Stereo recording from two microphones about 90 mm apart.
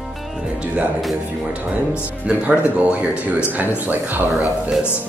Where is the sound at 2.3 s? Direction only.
15° right (ahead or behind).